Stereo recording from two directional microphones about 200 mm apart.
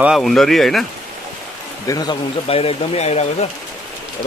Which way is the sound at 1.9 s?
20° left (ahead or behind).